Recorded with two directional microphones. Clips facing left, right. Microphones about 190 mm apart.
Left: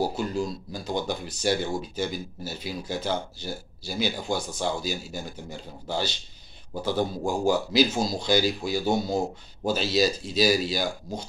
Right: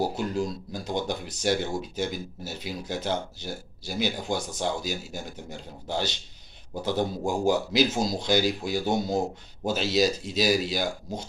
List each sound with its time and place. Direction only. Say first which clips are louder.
0.0 s speech: even; 20° right (ahead or behind)